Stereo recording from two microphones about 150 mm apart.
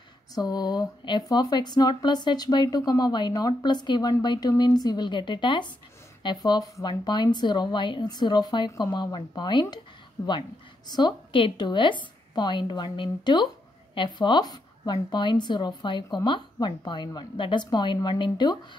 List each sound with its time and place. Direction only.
0.3 s a woman's voice: 25° left (ahead or behind)